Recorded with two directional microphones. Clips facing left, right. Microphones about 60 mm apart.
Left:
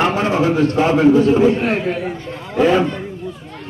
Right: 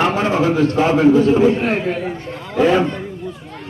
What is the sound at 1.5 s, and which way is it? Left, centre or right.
Speech, right.